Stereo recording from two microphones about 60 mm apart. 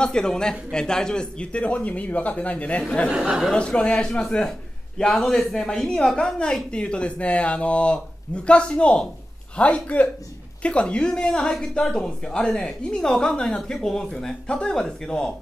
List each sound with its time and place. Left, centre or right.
0.0 s a man's voice: centre
3.2 s speech: centre
3.5 s a man's voice: centre